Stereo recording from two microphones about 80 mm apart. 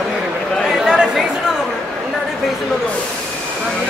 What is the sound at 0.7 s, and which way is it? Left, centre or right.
Chatter, centre.